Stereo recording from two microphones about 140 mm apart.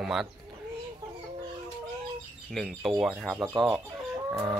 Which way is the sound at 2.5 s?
Centre (ahead or behind).